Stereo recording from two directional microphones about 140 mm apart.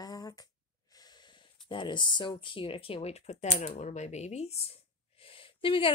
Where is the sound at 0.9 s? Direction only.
30° left (ahead or behind).